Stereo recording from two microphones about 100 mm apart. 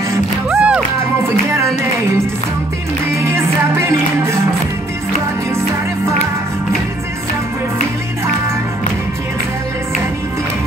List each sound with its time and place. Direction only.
0.5 s music: 10° right (ahead or behind)
3.2 s music: 25° right (ahead or behind)